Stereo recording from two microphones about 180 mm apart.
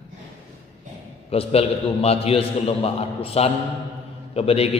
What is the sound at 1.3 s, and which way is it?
A man's voice, 35° left (ahead or behind).